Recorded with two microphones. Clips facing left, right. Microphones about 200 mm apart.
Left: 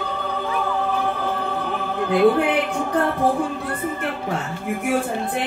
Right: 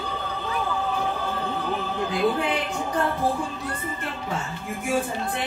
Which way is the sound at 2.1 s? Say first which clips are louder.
Left 8 dB; 60° left (ahead or behind).